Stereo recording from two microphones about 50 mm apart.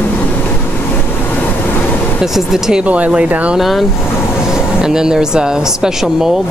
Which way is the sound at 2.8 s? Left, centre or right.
Right.